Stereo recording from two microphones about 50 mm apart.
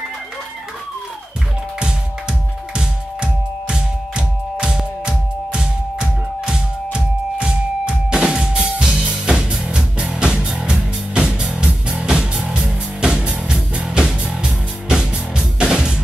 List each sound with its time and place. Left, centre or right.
1.8 s music: centre